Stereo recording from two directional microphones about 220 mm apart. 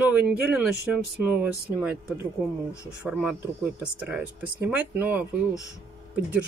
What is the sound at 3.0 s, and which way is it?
Speech, 5° right (ahead or behind).